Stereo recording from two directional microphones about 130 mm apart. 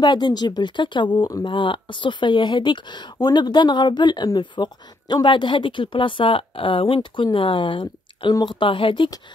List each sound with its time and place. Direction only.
0.0 s speech: 35° left (ahead or behind)